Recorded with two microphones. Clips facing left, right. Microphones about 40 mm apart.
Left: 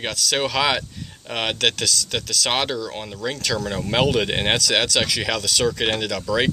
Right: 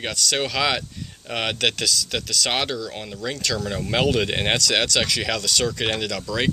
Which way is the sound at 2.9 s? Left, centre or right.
Centre.